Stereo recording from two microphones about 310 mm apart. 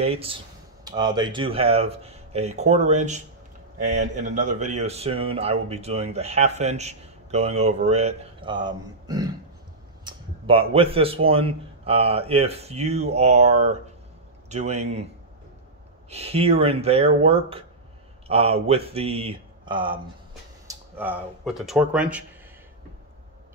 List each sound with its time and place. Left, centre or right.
0.0 s speech: centre
16.1 s speech: centre